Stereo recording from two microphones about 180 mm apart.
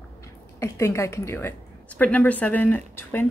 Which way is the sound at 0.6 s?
15° left (ahead or behind).